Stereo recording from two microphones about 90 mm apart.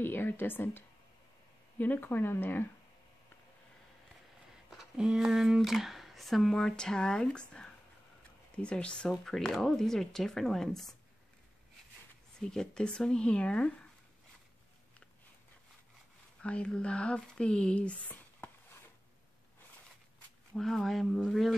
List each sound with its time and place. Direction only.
0.0 s speech: 20° left (ahead or behind)
4.6 s speech: 5° right (ahead or behind)
8.2 s a sound: 15° left (ahead or behind)
9.2 s speech: 5° left (ahead or behind)
12.4 s speech: 10° left (ahead or behind)
16.4 s speech: 10° left (ahead or behind)
20.5 s speech: 5° left (ahead or behind)